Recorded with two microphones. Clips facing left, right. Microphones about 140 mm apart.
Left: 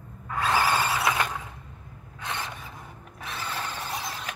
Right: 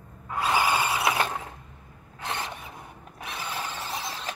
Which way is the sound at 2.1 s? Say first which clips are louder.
Right 1 dB; 25° right (ahead or behind).